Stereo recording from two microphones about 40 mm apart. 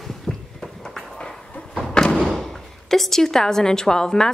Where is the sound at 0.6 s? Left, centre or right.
Centre.